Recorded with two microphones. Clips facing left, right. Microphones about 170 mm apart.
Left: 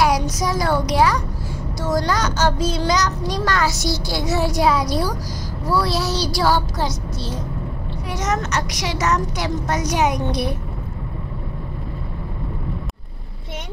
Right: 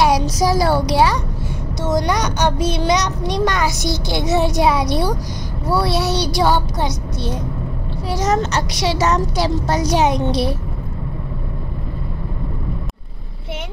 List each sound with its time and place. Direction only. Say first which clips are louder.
0.0 s a sound: right 3 dB; 30° right (ahead or behind)
0.9 s a woman's voice: right 2 dB; 25° right (ahead or behind)
8.1 s a woman's voice: right 5 dB; 30° right (ahead or behind)